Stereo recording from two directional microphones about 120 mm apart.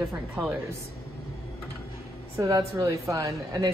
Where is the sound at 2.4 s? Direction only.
30° right (ahead or behind).